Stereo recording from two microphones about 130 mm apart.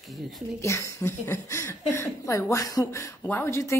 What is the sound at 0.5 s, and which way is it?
A woman's voice, 20° left (ahead or behind).